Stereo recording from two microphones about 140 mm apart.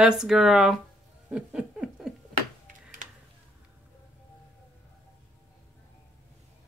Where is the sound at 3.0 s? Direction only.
65° right (ahead or behind).